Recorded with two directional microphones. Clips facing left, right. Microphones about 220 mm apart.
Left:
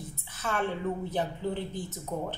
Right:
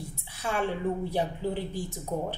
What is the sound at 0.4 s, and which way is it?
A woman's voice, 10° right (ahead or behind).